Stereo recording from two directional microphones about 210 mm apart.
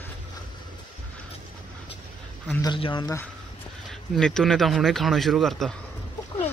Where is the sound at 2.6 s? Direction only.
20° left (ahead or behind).